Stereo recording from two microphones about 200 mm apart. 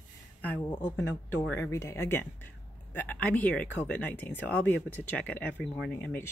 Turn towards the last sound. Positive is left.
turn(degrees=10)  # may be behind; listen again after turning